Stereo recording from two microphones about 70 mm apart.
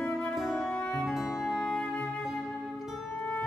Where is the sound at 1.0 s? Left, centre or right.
Centre.